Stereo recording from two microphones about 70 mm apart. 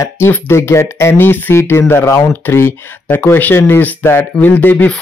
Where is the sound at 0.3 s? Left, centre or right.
Left.